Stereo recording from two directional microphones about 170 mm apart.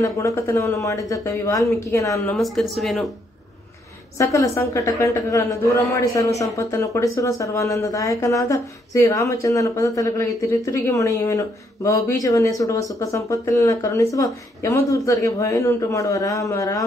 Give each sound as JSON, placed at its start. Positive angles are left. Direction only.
{"t": 0.0, "sound": "speech", "side_deg": 20}
{"t": 2.3, "sound": "speech", "side_deg": 0}
{"t": 4.2, "sound": "speech", "side_deg": 20}